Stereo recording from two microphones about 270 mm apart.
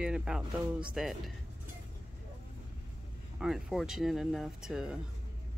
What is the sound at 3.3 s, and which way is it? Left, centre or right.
Speech, centre.